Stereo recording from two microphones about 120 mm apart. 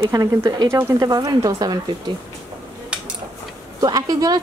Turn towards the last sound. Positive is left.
turn(degrees=-30)  # may be behind; listen again after turning